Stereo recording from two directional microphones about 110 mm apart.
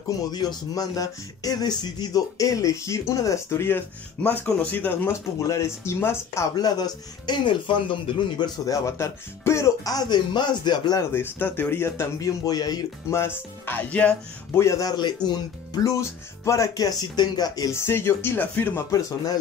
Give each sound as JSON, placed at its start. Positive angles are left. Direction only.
{"t": 0.2, "sound": "speech", "side_deg": 40}
{"t": 6.5, "sound": "speech", "side_deg": 40}
{"t": 8.6, "sound": "speech", "side_deg": 30}
{"t": 11.0, "sound": "speech", "side_deg": 20}
{"t": 13.7, "sound": "speech", "side_deg": 15}
{"t": 14.6, "sound": "speech", "side_deg": 30}
{"t": 17.7, "sound": "speech", "side_deg": 20}